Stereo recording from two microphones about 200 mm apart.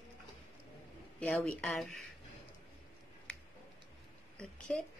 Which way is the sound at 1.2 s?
5° left (ahead or behind).